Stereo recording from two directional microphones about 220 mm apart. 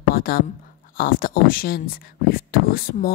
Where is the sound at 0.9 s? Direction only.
40° left (ahead or behind).